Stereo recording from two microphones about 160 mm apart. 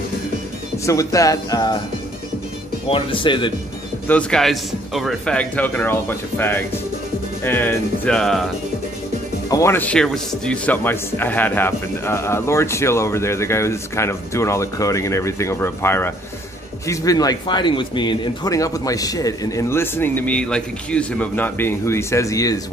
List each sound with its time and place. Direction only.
0.8 s speech: 20° left (ahead or behind)
2.9 s speech: 30° left (ahead or behind)
4.1 s a man's voice: 5° left (ahead or behind)
9.5 s a man's voice: 15° left (ahead or behind)